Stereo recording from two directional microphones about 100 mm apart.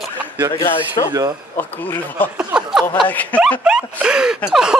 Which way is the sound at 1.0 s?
45° left (ahead or behind).